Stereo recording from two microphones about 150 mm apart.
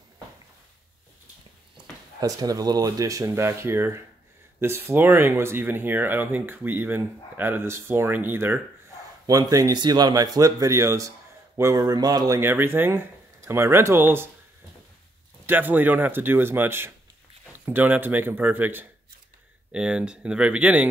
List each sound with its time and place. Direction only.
2.1 s speech: 25° right (ahead or behind)
9.2 s speech: 25° right (ahead or behind)
15.4 s speech: 15° right (ahead or behind)